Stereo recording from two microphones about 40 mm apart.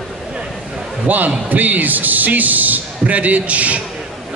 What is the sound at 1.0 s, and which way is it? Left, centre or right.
A man's voice, right.